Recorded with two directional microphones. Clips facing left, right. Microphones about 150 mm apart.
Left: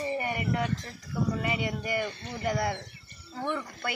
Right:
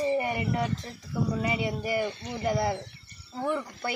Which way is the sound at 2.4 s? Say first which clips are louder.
Right 2 dB; 30° right (ahead or behind).